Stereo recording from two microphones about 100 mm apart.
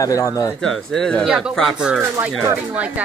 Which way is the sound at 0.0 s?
35° left (ahead or behind).